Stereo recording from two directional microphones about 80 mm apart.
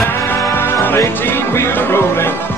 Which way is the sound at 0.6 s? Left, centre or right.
Left.